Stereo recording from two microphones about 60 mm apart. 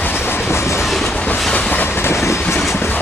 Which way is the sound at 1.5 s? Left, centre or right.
Left.